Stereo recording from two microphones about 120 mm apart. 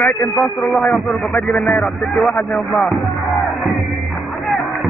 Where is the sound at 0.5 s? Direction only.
Centre (ahead or behind).